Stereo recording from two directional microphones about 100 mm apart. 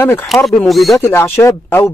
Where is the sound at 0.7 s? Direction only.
Centre (ahead or behind).